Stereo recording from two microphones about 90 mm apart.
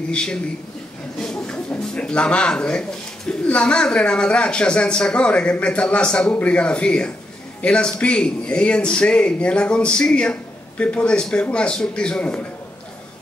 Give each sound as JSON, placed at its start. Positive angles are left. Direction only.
{"t": 0.1, "sound": "speech", "side_deg": 10}